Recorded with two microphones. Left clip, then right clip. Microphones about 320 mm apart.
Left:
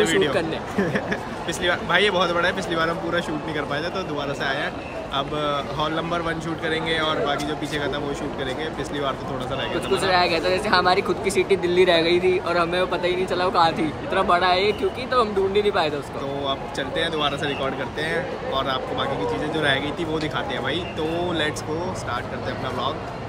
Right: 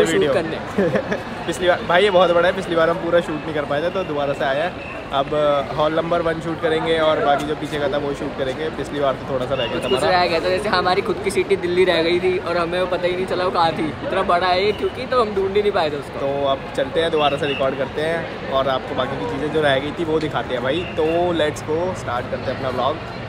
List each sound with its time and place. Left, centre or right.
0.0 s speech: centre
9.8 s speech: centre
10.1 s speech: centre
13.5 s speech: centre
14.1 s speech: centre
17.6 s speech: centre